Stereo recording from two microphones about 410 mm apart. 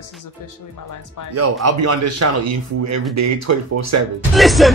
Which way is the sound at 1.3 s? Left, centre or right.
Right.